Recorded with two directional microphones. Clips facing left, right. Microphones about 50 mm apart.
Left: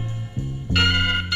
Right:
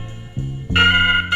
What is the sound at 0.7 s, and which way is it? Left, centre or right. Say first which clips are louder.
Music: right 7 dB; right.